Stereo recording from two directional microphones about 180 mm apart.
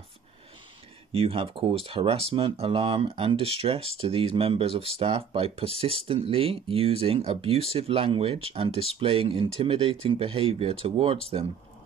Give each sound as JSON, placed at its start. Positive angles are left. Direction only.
{"t": 1.1, "sound": "speech", "side_deg": -30}